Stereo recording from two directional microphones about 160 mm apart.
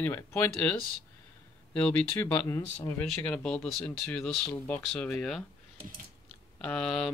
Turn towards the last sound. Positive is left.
turn(degrees=5)  # may be behind; listen again after turning